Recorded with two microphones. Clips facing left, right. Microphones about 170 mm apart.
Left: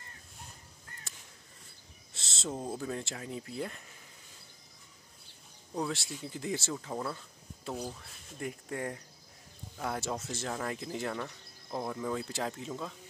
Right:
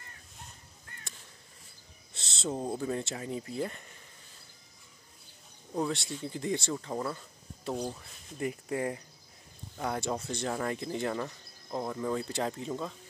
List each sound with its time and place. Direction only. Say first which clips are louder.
1.1 s crow: right 3 dB; centre (ahead or behind)
2.1 s owl: right 3 dB; centre (ahead or behind)
2.5 s speech: right 3 dB; 15° right (ahead or behind)
2.8 s speech: right 4 dB; centre (ahead or behind)
5.8 s speech: right 3 dB; centre (ahead or behind)